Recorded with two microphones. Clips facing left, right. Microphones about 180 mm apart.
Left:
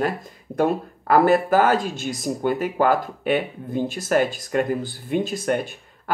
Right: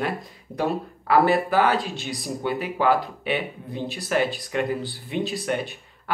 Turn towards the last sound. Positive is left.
turn(degrees=45)  # may be behind; listen again after turning